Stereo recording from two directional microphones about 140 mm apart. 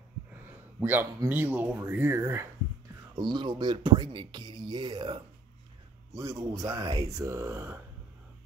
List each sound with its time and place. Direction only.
0.7 s speech: 15° right (ahead or behind)
3.2 s speech: 35° right (ahead or behind)